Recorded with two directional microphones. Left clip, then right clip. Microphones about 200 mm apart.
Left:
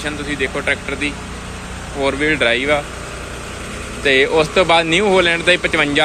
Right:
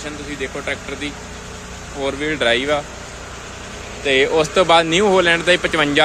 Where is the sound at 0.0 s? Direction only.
5° right (ahead or behind).